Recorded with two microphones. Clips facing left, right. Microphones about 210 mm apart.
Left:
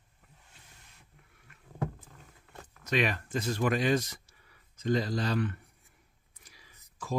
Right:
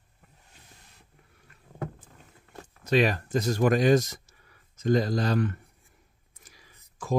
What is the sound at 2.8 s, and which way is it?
Speech, 35° right (ahead or behind).